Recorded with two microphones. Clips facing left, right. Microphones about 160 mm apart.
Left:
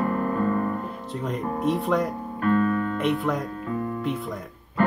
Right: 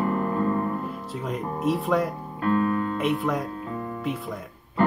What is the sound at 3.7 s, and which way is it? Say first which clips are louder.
Music: left 4 dB; 40° right (ahead or behind).